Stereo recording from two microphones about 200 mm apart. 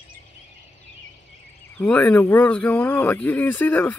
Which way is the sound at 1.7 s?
5° left (ahead or behind).